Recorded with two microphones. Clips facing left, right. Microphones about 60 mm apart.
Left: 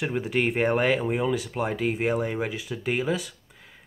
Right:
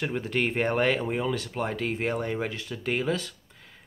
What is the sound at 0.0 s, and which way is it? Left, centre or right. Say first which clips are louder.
Speech: left 2 dB; centre.